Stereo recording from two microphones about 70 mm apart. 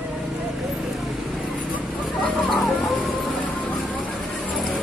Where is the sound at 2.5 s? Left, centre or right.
Centre.